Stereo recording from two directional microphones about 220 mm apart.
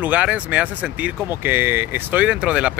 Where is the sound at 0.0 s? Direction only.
5° right (ahead or behind).